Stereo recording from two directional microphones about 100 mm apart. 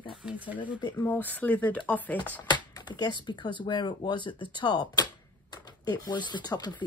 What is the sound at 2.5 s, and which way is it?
Computer keyboard, 45° left (ahead or behind).